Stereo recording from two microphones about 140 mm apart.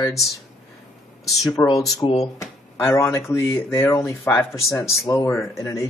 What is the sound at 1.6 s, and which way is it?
Speech, 25° left (ahead or behind).